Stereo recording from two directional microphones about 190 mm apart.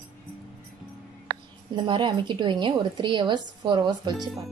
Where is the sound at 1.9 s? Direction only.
25° right (ahead or behind).